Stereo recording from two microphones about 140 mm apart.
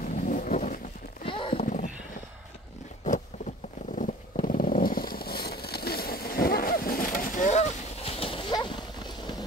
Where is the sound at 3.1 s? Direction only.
60° left (ahead or behind); by 8.6 s 35° left (ahead or behind).